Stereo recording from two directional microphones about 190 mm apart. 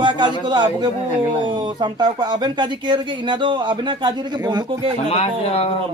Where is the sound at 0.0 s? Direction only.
25° right (ahead or behind).